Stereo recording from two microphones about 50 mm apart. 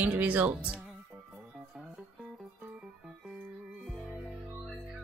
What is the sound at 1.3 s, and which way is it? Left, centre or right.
Music, centre.